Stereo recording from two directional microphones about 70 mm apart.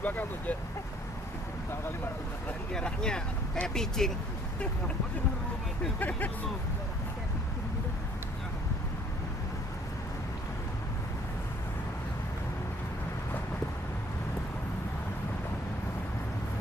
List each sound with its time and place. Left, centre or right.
0.0 s speech: left
2.7 s speech: centre
5.9 s speech: left